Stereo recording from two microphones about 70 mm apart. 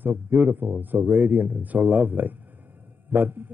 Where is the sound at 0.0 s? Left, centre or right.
Right.